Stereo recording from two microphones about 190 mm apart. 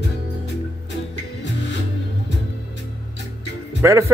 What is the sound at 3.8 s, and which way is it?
Speech, 15° right (ahead or behind).